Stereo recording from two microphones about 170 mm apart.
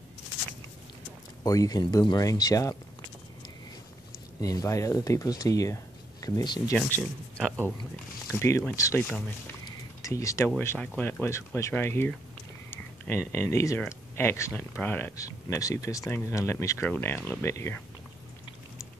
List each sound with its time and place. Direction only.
1.4 s speech: 20° left (ahead or behind)
4.4 s speech: 20° left (ahead or behind)
6.9 s speech: 5° left (ahead or behind)
9.5 s a sound: 20° left (ahead or behind)
10.6 s speech: 10° left (ahead or behind)